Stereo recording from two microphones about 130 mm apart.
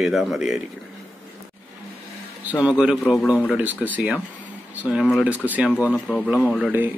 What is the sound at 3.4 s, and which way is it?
Speech, 10° right (ahead or behind).